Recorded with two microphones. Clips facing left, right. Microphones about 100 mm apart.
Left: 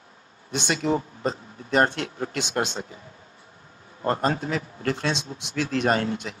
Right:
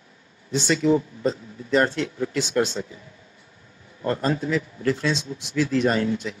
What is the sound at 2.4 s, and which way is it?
Speech, 20° left (ahead or behind).